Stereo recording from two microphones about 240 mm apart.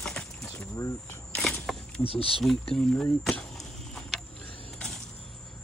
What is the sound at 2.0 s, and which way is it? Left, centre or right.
Speech, left.